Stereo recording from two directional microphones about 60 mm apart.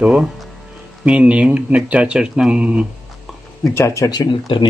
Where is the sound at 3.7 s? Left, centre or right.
Left.